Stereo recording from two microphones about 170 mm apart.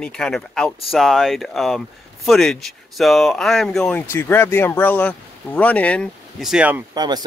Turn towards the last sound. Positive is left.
turn(degrees=-25)  # may be behind; listen again after turning